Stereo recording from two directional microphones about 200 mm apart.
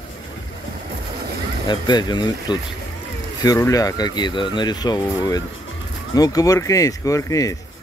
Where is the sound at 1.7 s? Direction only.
20° left (ahead or behind).